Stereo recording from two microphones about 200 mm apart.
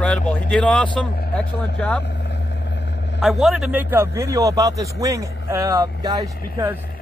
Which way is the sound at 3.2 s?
Centre (ahead or behind).